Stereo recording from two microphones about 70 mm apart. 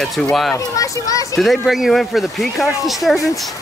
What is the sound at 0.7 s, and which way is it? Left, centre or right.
Speech, left.